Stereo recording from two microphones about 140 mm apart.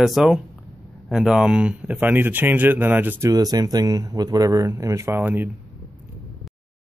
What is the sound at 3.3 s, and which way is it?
A man's voice, 25° right (ahead or behind).